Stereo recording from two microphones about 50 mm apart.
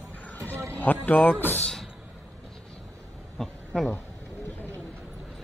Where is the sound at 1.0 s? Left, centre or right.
Left.